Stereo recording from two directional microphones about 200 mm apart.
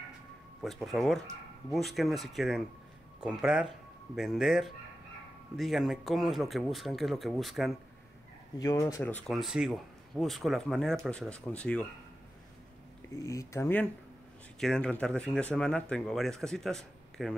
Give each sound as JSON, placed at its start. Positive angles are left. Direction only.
{"t": 0.6, "sound": "speech", "side_deg": 0}
{"t": 8.5, "sound": "speech", "side_deg": 15}
{"t": 9.3, "sound": "speech", "side_deg": 0}
{"t": 13.1, "sound": "speech", "side_deg": 15}